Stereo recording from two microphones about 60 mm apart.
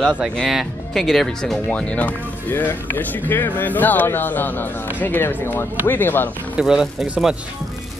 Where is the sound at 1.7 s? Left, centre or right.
Left.